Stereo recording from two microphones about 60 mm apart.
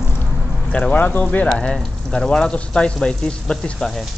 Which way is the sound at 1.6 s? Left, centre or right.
Centre.